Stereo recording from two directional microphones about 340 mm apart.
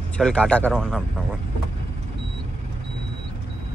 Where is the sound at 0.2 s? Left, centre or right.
Centre.